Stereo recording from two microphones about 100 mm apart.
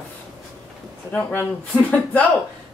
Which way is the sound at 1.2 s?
20° left (ahead or behind).